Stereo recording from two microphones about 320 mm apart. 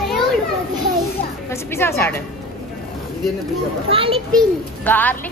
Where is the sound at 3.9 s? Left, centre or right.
Centre.